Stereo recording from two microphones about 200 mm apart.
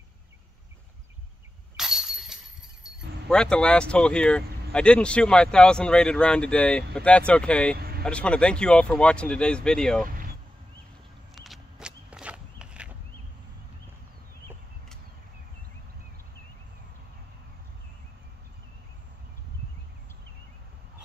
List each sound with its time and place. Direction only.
1.8 s speech: centre (ahead or behind)
7.7 s vehicle: 50° right (ahead or behind)
8.0 s speech: 5° left (ahead or behind)
11.3 s walk: centre (ahead or behind)